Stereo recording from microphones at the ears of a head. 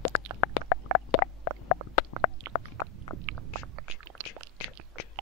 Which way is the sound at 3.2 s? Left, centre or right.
Right.